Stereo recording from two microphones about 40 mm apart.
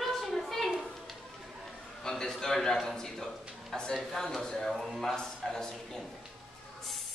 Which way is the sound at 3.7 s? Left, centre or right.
Centre.